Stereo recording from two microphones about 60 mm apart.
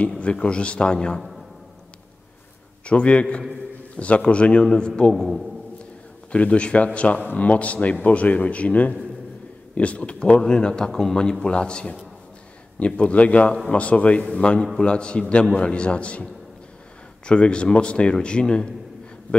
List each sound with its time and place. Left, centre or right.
0.2 s a man's voice: centre
1.1 s a sound: centre
2.8 s a man's voice: centre
5.1 s a man's voice: centre
6.3 s a man's voice: left
17.3 s a man's voice: centre